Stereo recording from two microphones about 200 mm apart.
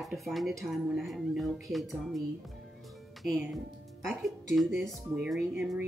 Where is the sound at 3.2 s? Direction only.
Centre (ahead or behind).